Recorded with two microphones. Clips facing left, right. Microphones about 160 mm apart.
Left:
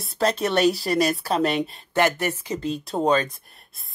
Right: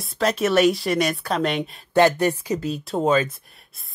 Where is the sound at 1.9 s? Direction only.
15° right (ahead or behind).